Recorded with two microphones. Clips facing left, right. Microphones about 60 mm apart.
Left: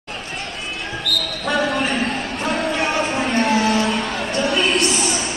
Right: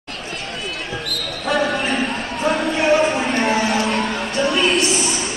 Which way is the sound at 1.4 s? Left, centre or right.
Centre.